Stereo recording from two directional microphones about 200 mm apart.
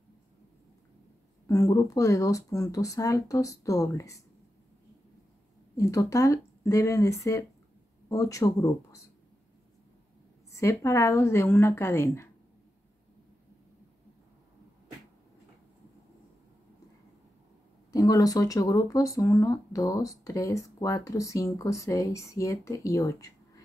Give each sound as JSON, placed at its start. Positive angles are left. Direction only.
{"t": 1.5, "sound": "speech", "side_deg": 15}
{"t": 5.8, "sound": "speech", "side_deg": 15}
{"t": 10.5, "sound": "speech", "side_deg": 15}
{"t": 17.9, "sound": "speech", "side_deg": 15}